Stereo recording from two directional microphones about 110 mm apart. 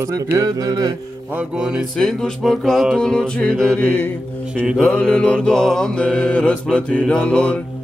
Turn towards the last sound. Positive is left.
turn(degrees=10)  # may be behind; listen again after turning